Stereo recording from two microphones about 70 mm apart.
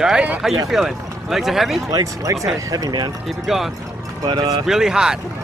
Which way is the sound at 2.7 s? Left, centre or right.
Right.